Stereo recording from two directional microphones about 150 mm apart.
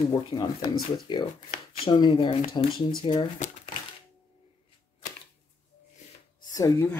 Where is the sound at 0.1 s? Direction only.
25° left (ahead or behind).